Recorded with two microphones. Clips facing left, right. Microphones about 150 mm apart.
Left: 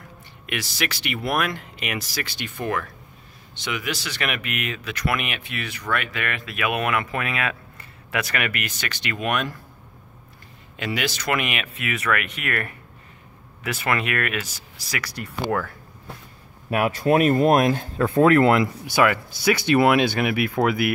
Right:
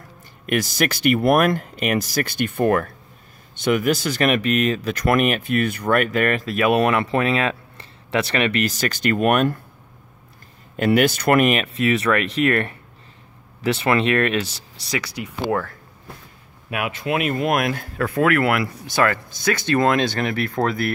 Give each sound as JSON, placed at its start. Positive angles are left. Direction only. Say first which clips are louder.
{"t": 0.5, "sound": "speech", "louder": "right 8 dB", "side_deg": -45}
{"t": 10.8, "sound": "speech", "louder": "right 10 dB", "side_deg": -50}
{"t": 16.7, "sound": "speech", "louder": "left 5 dB", "side_deg": 40}
{"t": 18.9, "sound": "speech", "louder": "right 1 dB", "side_deg": 10}